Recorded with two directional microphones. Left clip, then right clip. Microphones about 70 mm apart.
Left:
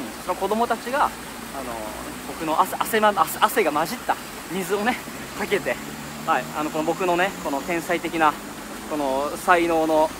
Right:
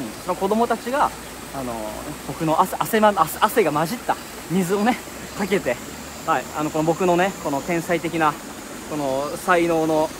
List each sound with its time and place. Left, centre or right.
0.3 s speech: centre
2.4 s speech: centre
4.6 s speech: centre
7.4 s speech: centre
8.9 s speech: left